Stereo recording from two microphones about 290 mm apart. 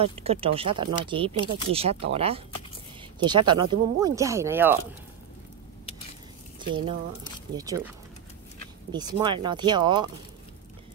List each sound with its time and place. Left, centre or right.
0.0 s speech: right
6.7 s speech: centre
8.9 s speech: centre